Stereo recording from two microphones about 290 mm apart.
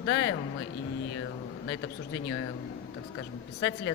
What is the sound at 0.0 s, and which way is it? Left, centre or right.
Speech, left.